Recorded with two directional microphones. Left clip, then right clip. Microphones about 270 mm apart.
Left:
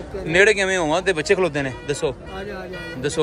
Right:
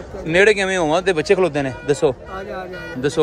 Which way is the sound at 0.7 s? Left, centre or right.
Centre.